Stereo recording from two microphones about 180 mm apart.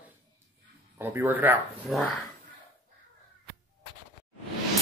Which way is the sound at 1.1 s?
10° right (ahead or behind).